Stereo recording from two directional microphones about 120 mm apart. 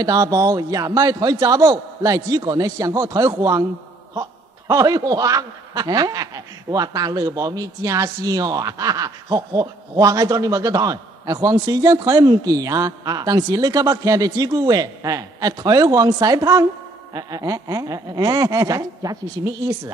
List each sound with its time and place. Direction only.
0.0 s a man's voice: 30° right (ahead or behind)